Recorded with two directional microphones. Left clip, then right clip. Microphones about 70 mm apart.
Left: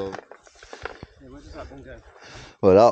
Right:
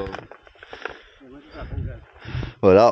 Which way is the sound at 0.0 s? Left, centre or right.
Centre.